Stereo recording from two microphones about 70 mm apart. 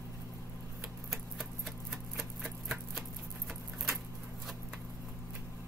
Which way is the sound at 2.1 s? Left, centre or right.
Centre.